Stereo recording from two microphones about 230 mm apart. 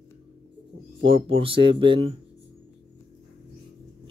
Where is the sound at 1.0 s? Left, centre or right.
Right.